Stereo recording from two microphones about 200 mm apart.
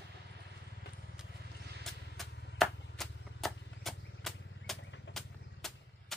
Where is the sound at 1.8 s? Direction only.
Centre (ahead or behind).